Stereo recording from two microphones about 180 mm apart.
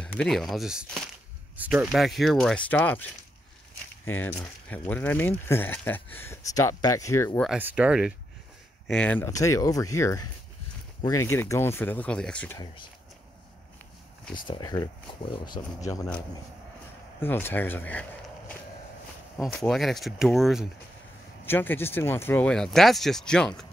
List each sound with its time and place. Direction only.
0.0 s speech: 5° left (ahead or behind)
7.4 s speech: 5° right (ahead or behind)
8.8 s speech: 5° left (ahead or behind)
12.5 s speech: 25° left (ahead or behind)
14.5 s speech: 20° left (ahead or behind)
17.2 s speech: 10° left (ahead or behind)
19.3 s speech: 5° left (ahead or behind)
21.5 s speech: 10° left (ahead or behind)